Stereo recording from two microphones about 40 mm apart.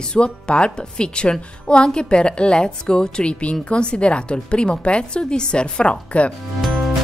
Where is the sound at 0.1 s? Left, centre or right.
Left.